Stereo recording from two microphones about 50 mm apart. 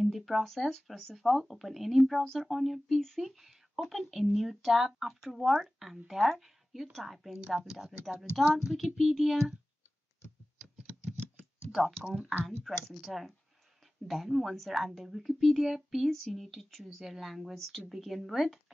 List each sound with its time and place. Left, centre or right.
0.0 s speech: centre
11.7 s speech: centre